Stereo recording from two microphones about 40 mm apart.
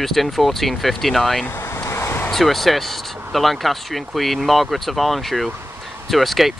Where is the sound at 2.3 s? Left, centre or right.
Centre.